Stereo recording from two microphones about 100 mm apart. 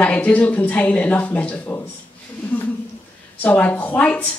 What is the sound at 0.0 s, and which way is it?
Speech, 15° left (ahead or behind).